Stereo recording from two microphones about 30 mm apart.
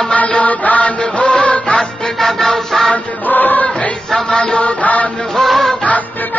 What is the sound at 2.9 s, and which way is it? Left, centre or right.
Music, left.